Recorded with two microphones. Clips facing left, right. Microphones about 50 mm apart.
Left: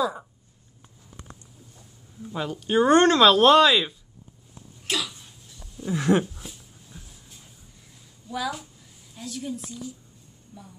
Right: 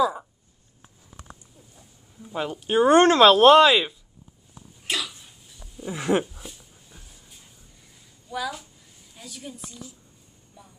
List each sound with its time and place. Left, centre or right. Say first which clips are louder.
2.3 s speech: even; centre
3.0 s speech: right 3 dB; right
4.8 s sneeze: even; centre
5.9 s speech: left 2 dB; centre
6.2 s a sound: left 1 dB; centre
8.3 s a woman's voice: left 1 dB; centre